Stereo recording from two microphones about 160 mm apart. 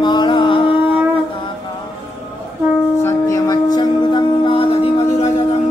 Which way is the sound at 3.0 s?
20° left (ahead or behind).